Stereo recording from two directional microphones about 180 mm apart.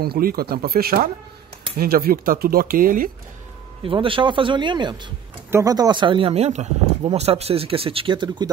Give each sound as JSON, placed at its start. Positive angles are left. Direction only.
{"t": 0.0, "sound": "speech", "side_deg": -55}
{"t": 3.8, "sound": "speech", "side_deg": -30}